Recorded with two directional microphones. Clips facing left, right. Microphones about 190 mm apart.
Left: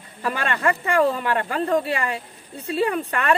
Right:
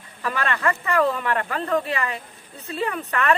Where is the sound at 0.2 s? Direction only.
30° left (ahead or behind).